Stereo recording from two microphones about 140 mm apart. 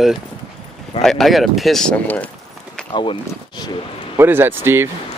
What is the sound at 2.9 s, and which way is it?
Speech, 35° left (ahead or behind).